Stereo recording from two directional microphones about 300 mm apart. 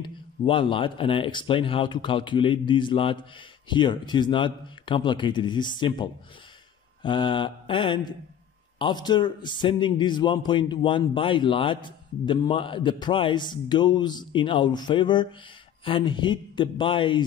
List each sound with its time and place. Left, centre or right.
0.0 s a man's voice: centre